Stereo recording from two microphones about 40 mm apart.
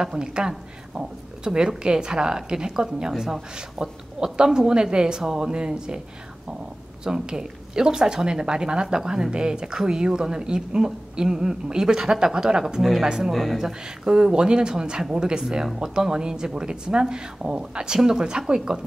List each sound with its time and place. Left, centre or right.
0.0 s speech: centre
7.1 s speech: centre
13.3 s speech: centre
13.6 s speech: centre
15.5 s speech: centre